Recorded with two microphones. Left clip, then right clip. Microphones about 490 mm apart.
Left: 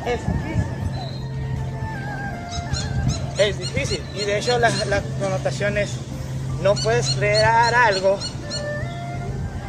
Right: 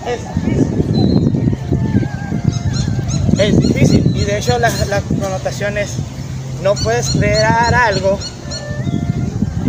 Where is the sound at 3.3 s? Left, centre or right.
Left.